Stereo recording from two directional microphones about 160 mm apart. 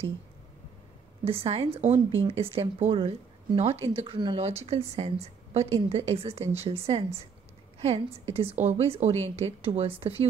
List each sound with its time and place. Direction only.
1.2 s speech: 35° right (ahead or behind)